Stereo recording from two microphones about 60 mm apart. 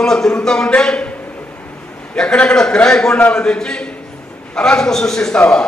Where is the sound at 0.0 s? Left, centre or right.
Centre.